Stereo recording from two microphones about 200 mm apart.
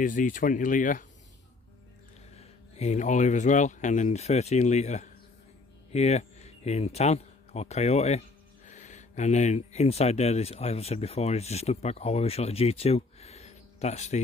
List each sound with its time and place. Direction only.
0.0 s speech: 40° left (ahead or behind)
2.3 s speech: 35° left (ahead or behind)